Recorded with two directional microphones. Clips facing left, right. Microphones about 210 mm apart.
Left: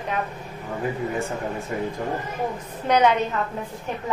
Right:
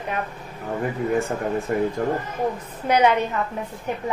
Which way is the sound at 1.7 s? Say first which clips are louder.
Right 6 dB; 50° right (ahead or behind).